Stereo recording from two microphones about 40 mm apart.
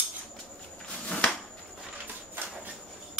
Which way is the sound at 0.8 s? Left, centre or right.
Left.